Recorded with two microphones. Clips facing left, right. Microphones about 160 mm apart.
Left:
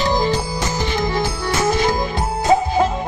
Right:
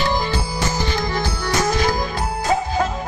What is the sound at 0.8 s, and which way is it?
Music, 25° left (ahead or behind).